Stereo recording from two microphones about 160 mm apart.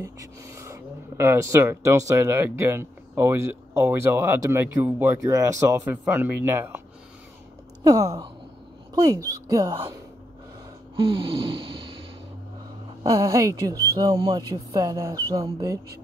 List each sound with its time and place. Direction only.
0.0 s speech: 20° right (ahead or behind)
7.8 s speech: 20° right (ahead or behind)
11.0 s a sound: 30° right (ahead or behind)
13.0 s speech: 20° right (ahead or behind)